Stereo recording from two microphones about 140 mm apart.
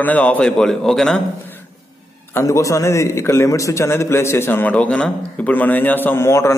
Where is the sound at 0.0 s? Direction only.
10° left (ahead or behind).